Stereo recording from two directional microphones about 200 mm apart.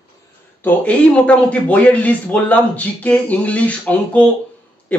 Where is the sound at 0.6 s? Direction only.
5° left (ahead or behind).